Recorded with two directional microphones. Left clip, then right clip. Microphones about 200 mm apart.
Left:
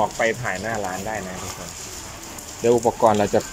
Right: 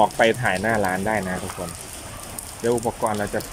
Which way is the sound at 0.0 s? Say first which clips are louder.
Right 4 dB; 15° right (ahead or behind).